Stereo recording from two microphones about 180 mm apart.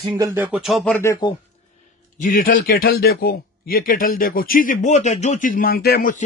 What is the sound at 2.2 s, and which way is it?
Speech, 50° left (ahead or behind).